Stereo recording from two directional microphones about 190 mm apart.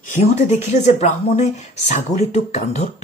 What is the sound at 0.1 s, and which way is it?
Speech, 35° left (ahead or behind).